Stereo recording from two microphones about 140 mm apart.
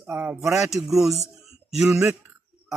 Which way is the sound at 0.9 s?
20° right (ahead or behind).